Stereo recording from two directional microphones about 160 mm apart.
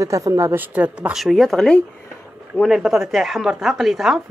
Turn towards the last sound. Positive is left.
turn(degrees=0)  # may be behind; listen again after turning